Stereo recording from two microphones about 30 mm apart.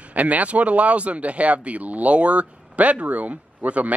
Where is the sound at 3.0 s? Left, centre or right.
Right.